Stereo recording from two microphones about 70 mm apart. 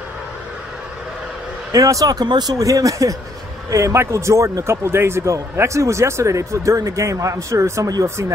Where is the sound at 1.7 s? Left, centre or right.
Right.